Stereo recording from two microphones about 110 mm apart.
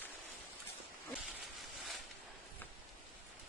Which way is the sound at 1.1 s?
5° right (ahead or behind).